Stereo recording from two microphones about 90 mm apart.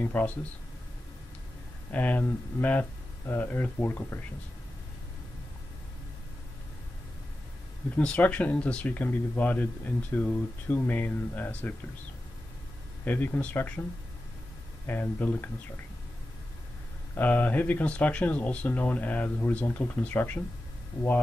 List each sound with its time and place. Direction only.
0.0 s speech: 20° left (ahead or behind)
1.9 s speech: 15° left (ahead or behind)
7.9 s speech: 15° left (ahead or behind)
13.0 s speech: 20° left (ahead or behind)
14.9 s speech: 20° left (ahead or behind)
17.1 s speech: 20° left (ahead or behind)